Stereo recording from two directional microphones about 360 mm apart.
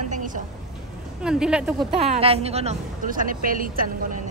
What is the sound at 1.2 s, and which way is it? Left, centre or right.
Speech, centre.